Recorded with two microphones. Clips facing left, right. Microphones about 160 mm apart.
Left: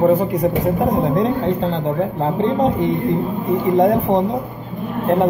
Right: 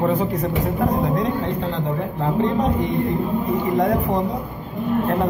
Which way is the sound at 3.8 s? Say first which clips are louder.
Left 6 dB; 25° left (ahead or behind).